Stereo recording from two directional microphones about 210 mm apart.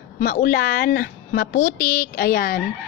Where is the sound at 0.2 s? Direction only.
45° left (ahead or behind).